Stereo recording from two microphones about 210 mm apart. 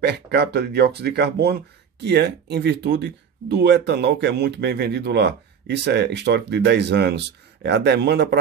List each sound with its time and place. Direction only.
0.0 s speech: 50° right (ahead or behind)